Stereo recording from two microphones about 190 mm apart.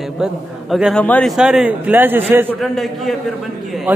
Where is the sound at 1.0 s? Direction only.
10° left (ahead or behind).